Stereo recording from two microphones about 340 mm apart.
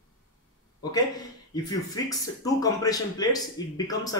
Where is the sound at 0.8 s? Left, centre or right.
Centre.